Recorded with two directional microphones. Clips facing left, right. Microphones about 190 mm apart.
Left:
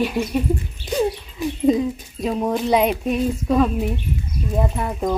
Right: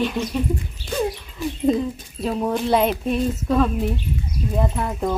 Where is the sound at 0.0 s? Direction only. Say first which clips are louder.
Left 2 dB; 10° left (ahead or behind).